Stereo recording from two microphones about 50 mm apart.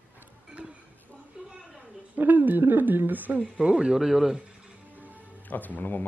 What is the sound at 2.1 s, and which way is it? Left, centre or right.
Speech, right.